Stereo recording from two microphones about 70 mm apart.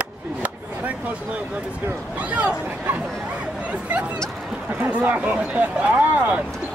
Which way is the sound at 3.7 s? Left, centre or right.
Centre.